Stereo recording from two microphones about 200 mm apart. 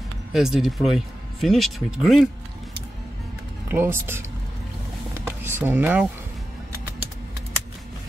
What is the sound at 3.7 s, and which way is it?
Speech, 10° right (ahead or behind).